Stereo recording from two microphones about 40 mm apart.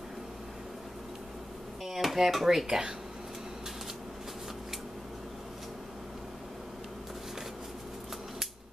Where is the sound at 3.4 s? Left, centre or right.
Centre.